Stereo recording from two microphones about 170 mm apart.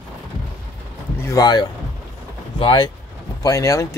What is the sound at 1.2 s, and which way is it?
Speech, 20° left (ahead or behind).